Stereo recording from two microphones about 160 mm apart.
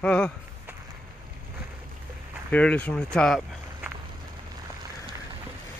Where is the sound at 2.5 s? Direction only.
10° left (ahead or behind).